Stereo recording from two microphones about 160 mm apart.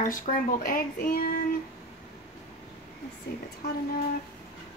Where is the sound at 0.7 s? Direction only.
65° left (ahead or behind).